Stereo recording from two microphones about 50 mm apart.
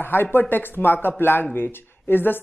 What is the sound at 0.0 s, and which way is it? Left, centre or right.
Speech, left.